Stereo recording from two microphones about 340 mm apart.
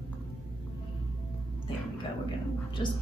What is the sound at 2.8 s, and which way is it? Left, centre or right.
Speech, centre.